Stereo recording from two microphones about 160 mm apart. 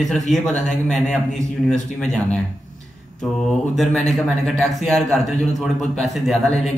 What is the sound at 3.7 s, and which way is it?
A man's voice, centre (ahead or behind).